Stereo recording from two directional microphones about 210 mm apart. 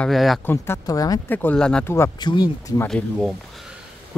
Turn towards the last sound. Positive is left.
turn(degrees=0)  # may be behind; listen again after turning